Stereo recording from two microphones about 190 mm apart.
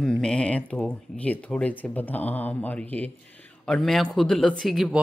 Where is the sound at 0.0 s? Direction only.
5° left (ahead or behind).